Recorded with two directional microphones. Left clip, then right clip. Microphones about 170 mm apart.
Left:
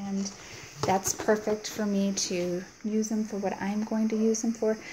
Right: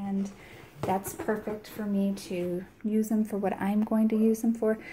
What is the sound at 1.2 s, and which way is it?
Speech, 35° left (ahead or behind).